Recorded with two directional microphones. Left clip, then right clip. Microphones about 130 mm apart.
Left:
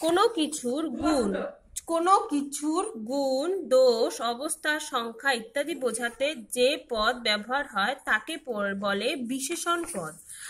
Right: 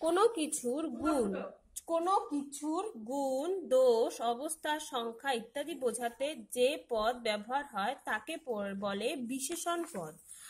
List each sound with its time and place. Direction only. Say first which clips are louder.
0.0 s speech: left 6 dB; 45° right (ahead or behind)
1.9 s speech: left 8 dB; 20° right (ahead or behind)
2.6 s speech: left 6 dB; centre (ahead or behind)
3.1 s speech: left 6 dB; 50° right (ahead or behind)